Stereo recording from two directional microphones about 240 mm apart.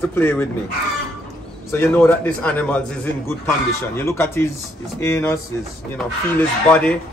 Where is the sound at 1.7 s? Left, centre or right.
Centre.